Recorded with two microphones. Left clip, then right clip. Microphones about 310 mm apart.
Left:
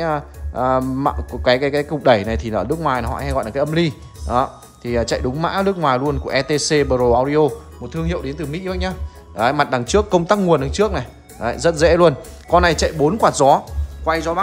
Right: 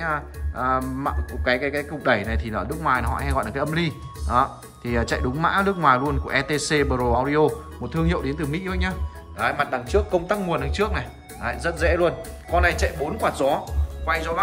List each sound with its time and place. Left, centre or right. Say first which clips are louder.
0.0 s speech: left 5 dB; centre
9.4 s a man's voice: left 6 dB; centre